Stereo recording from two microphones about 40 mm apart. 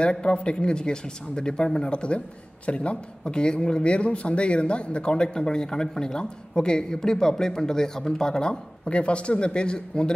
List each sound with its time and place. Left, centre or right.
0.0 s speech: left